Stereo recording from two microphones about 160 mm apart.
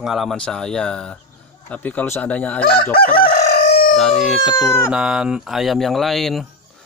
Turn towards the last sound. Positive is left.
turn(degrees=0)  # may be behind; listen again after turning